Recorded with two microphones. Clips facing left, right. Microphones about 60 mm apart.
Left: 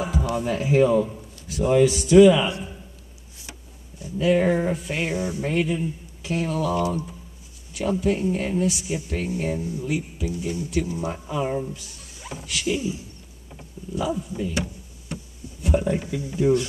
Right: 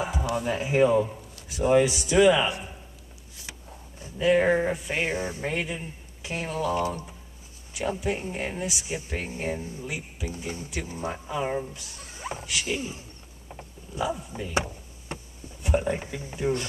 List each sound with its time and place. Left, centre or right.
0.2 s a man's voice: centre
4.2 s speech: centre
4.9 s speech: right
5.5 s a man's voice: centre
7.7 s a man's voice: centre; by 9.8 s right
9.8 s speech: centre
10.2 s speech: right
11.1 s speech: centre
12.0 s a sound: right
12.6 s speech: right
13.6 s a sound: right
15.7 s a man's voice: centre
16.0 s speech: right